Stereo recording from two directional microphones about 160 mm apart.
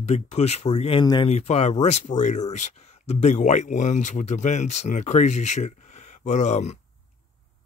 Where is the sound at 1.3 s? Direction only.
45° left (ahead or behind).